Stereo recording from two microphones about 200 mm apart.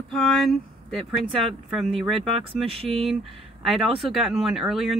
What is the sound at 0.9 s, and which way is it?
Speech, 5° right (ahead or behind).